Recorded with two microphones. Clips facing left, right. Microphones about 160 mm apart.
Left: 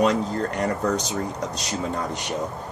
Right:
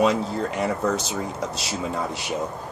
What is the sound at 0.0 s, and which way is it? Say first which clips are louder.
Speech: even; 5° right (ahead or behind).